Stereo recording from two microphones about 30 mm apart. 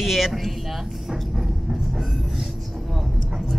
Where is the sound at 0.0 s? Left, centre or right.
Centre.